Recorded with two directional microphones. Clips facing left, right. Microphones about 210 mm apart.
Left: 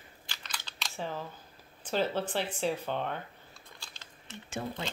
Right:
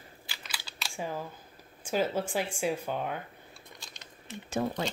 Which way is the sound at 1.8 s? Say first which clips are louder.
Right 1 dB; 10° right (ahead or behind).